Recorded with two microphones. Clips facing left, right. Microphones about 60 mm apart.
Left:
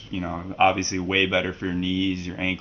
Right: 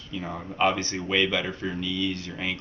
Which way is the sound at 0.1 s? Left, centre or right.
Left.